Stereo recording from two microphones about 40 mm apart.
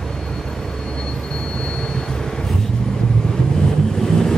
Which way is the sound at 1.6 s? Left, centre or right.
Left.